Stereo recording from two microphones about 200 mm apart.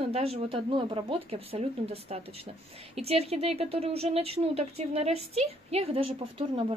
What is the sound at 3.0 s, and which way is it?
A woman's voice, 30° right (ahead or behind).